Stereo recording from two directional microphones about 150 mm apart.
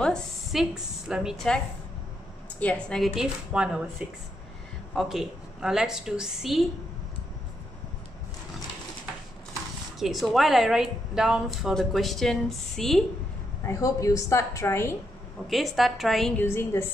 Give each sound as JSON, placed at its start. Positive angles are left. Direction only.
{"t": 0.0, "sound": "a woman's voice", "side_deg": 0}
{"t": 2.6, "sound": "a woman's voice", "side_deg": 5}
{"t": 4.9, "sound": "a woman's voice", "side_deg": 0}
{"t": 9.9, "sound": "a woman's voice", "side_deg": 0}
{"t": 13.7, "sound": "a woman's voice", "side_deg": 20}
{"t": 15.4, "sound": "a woman's voice", "side_deg": 0}
{"t": 16.3, "sound": "a woman's voice", "side_deg": 15}